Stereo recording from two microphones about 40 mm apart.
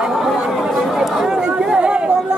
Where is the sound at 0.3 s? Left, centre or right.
Centre.